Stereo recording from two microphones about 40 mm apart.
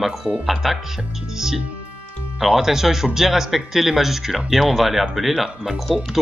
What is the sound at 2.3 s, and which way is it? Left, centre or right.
Speech, centre.